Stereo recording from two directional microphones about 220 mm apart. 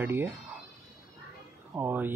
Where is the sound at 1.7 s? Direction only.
10° right (ahead or behind).